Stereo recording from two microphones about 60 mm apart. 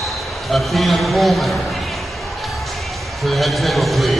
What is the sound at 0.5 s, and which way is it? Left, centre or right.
A man's voice, centre.